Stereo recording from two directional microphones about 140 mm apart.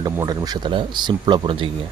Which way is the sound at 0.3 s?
30° right (ahead or behind).